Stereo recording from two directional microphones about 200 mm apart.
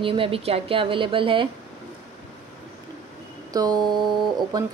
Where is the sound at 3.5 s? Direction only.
20° right (ahead or behind).